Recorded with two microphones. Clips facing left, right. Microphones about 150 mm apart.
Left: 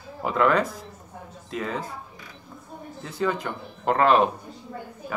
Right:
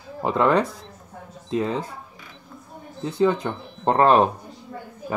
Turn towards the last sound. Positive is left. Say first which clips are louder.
# right 3 dB
turn(degrees=-35)  # may be behind; listen again after turning